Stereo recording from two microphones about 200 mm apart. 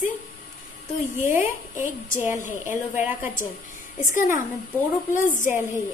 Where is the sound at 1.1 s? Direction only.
10° right (ahead or behind).